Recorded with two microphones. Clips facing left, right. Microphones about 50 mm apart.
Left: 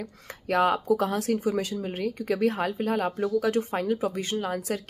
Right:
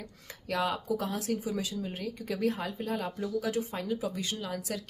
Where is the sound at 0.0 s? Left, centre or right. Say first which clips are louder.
Left 8 dB; left.